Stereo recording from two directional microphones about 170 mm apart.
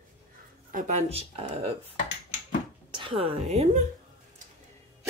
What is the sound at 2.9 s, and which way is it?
Speech, 30° right (ahead or behind).